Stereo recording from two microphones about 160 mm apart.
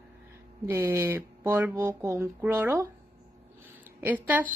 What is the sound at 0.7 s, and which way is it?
A woman's voice, 15° right (ahead or behind).